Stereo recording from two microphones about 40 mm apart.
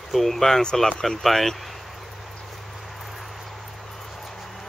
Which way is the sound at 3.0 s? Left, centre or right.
Centre.